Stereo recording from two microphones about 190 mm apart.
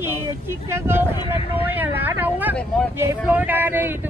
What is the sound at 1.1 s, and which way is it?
Speech, 30° left (ahead or behind).